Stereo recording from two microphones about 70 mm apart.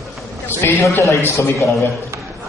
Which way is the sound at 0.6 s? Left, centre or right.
Left.